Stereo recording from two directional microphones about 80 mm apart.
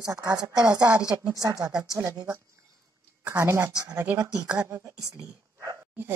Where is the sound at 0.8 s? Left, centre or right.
Centre.